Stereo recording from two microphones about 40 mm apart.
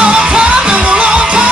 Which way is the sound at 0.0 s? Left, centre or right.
Right.